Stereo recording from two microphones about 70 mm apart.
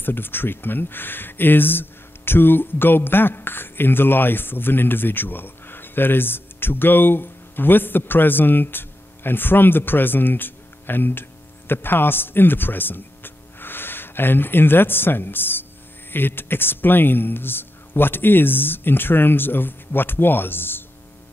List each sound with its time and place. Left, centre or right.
0.0 s speech: left